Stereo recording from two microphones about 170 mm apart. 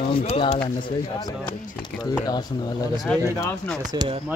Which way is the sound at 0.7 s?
25° left (ahead or behind).